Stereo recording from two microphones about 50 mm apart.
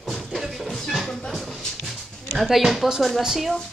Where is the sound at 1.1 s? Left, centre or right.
Centre.